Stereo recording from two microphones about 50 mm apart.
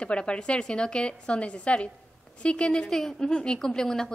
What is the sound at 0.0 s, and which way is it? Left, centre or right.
A woman's voice, left.